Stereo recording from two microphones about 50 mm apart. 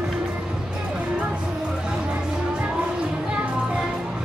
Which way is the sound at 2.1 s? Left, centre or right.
Right.